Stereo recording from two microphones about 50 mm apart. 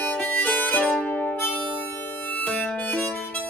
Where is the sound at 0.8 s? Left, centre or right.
Centre.